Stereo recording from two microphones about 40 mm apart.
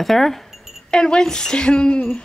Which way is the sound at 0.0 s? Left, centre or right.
Centre.